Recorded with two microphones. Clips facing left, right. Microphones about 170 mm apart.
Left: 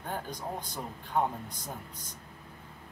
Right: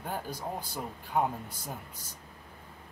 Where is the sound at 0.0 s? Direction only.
10° right (ahead or behind).